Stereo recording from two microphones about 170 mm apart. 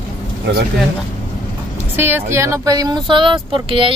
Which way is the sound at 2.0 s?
15° right (ahead or behind).